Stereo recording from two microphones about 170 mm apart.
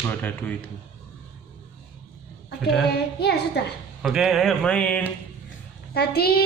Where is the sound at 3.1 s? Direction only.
70° left (ahead or behind).